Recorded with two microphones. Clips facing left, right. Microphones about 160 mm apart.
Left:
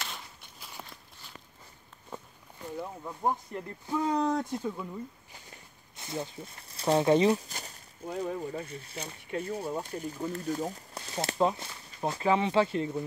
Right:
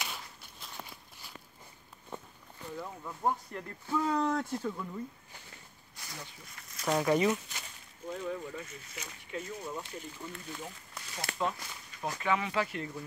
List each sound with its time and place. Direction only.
0.1 s walk: 5° left (ahead or behind)
2.8 s speech: 20° left (ahead or behind)
5.9 s speech: 25° left (ahead or behind)
9.3 s speech: 60° left (ahead or behind)
9.7 s speech: 45° left (ahead or behind)
11.1 s speech: 30° left (ahead or behind)